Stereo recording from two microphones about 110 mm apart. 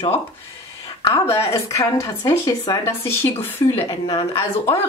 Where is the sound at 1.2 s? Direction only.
30° left (ahead or behind).